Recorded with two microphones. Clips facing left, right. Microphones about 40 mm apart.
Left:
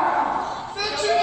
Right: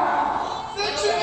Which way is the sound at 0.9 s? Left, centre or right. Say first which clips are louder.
Left 2 dB; centre.